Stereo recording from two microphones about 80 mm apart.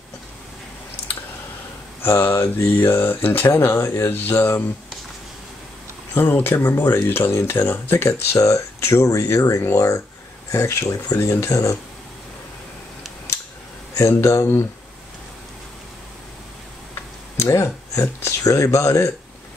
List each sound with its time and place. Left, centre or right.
2.0 s speech: left
6.1 s speech: left
13.9 s speech: left
17.4 s speech: left